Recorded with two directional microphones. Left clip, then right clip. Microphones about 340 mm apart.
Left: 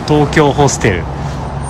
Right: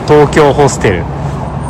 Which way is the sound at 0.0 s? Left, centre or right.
Centre.